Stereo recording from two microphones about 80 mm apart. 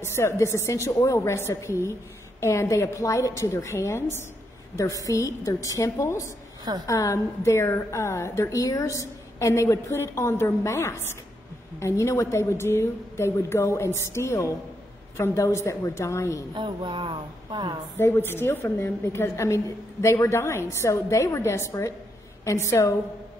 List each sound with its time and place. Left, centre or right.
0.0 s a woman's voice: left
16.5 s a sound: right
17.9 s a woman's voice: left